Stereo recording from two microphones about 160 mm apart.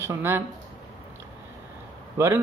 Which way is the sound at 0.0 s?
15° right (ahead or behind).